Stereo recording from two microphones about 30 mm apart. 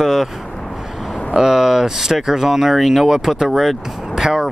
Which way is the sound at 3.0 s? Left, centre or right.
Centre.